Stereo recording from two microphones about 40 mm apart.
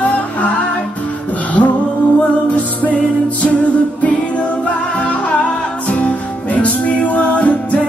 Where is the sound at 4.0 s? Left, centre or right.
Left.